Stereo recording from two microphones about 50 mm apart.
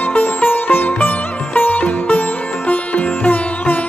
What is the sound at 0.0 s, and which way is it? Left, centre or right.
Sitar, left.